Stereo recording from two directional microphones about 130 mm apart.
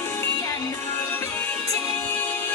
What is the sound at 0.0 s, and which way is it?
Music, 20° left (ahead or behind).